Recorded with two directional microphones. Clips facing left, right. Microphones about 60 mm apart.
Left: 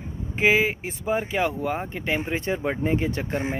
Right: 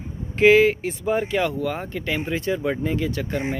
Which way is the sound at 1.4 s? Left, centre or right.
Left.